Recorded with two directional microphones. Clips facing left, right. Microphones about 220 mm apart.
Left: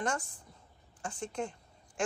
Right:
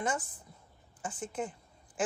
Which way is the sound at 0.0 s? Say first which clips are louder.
Right 1 dB; 5° right (ahead or behind).